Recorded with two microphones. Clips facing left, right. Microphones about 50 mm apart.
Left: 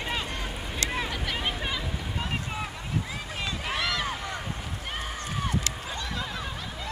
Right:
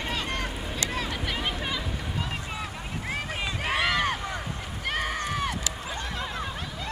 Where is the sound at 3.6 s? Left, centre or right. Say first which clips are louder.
Right 5 dB; right.